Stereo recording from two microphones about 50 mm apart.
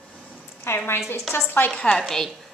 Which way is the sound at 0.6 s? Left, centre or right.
Left.